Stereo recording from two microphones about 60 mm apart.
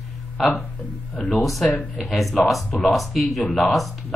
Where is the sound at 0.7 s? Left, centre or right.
Left.